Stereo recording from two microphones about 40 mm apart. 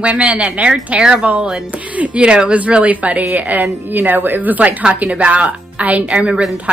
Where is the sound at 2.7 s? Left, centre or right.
Right.